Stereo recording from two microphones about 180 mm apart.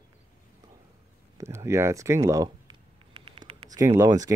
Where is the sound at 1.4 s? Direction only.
15° right (ahead or behind).